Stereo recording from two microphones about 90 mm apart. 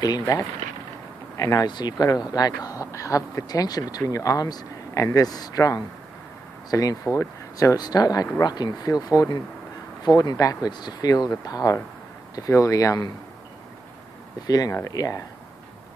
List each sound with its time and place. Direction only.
0.0 s speech: 40° left (ahead or behind)
1.7 s speech: 50° left (ahead or behind)
14.4 s speech: 45° left (ahead or behind)